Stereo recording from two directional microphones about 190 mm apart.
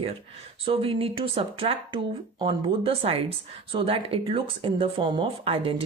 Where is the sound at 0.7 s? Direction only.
30° right (ahead or behind).